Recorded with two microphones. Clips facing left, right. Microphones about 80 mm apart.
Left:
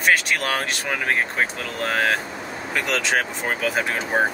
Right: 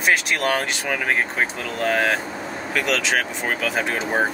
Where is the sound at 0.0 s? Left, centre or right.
Centre.